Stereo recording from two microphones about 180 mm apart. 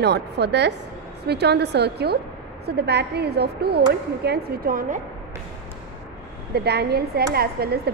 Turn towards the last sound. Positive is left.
turn(degrees=-60)  # may be behind; listen again after turning